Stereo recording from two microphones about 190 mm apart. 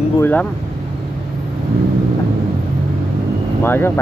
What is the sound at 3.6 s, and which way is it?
Speech, 10° left (ahead or behind).